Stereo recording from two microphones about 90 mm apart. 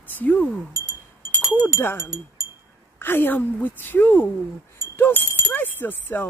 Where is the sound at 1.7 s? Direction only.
30° left (ahead or behind).